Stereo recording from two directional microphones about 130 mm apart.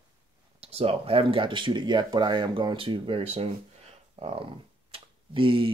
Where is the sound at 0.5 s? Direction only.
50° right (ahead or behind).